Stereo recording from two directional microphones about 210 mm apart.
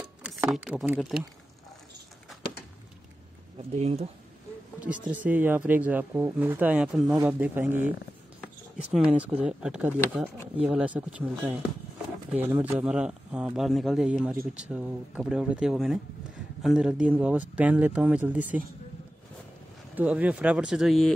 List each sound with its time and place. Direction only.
0.0 s speech: 5° right (ahead or behind)
3.7 s speech: 30° right (ahead or behind)
4.7 s speech: 5° right (ahead or behind)
20.0 s speech: 5° right (ahead or behind)